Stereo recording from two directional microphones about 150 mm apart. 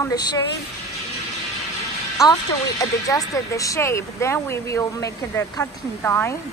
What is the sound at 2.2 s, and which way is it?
Speech, 25° left (ahead or behind).